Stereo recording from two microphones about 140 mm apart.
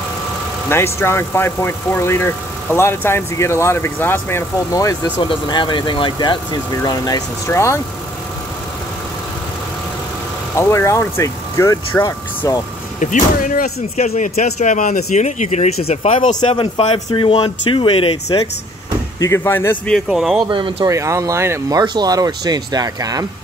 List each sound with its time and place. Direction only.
0.7 s speech: 15° left (ahead or behind)
5.3 s speech: 35° left (ahead or behind)
10.5 s speech: 20° left (ahead or behind)
13.0 s speech: 65° left (ahead or behind)
14.0 s speech: 55° left (ahead or behind)
19.1 s speech: 20° left (ahead or behind)
20.1 s speech: centre (ahead or behind)
20.4 s speech: 35° right (ahead or behind)
20.9 s speech: 20° right (ahead or behind)